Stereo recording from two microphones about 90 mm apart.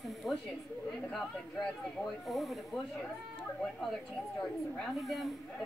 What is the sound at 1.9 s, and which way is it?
Speech, centre (ahead or behind).